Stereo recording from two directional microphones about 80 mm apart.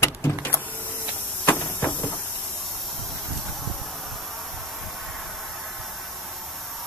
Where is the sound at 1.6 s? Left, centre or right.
Left.